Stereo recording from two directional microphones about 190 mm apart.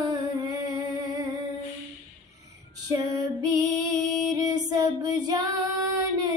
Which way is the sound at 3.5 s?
20° right (ahead or behind).